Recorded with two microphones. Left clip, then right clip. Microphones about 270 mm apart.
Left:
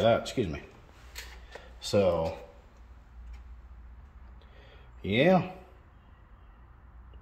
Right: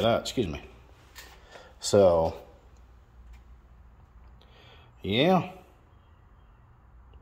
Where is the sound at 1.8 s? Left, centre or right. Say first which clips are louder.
Right 6 dB; right.